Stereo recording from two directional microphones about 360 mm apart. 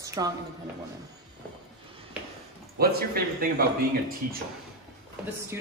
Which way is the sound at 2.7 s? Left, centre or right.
Right.